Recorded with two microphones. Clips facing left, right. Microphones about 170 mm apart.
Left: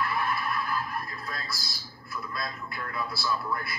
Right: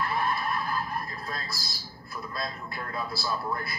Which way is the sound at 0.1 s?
35° right (ahead or behind).